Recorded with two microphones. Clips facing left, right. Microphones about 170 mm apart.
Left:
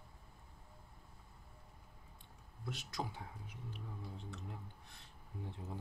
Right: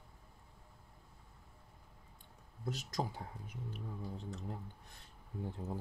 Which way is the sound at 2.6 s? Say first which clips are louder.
Right 4 dB; 40° right (ahead or behind).